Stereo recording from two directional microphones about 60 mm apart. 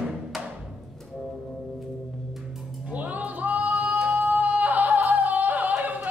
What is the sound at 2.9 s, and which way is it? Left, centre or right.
Singing, right.